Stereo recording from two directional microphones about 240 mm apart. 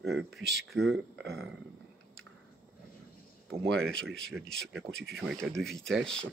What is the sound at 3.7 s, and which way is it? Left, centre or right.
Speech, centre.